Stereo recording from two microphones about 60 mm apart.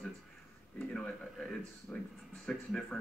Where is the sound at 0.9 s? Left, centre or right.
Centre.